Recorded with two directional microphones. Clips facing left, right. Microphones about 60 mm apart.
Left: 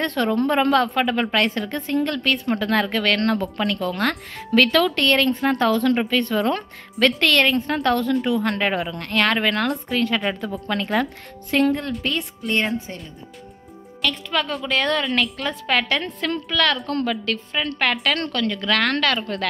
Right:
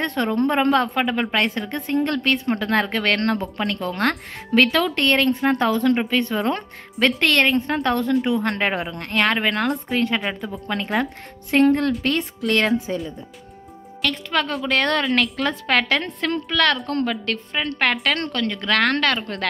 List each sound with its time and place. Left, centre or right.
0.0 s a woman's voice: right
1.9 s a woman's voice: right
10.2 s a woman's voice: centre
11.5 s a woman's voice: right
12.4 s a woman's voice: right
14.0 s a woman's voice: right
16.3 s a woman's voice: right